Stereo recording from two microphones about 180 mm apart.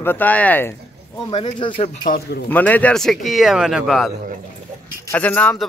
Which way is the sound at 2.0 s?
50° left (ahead or behind).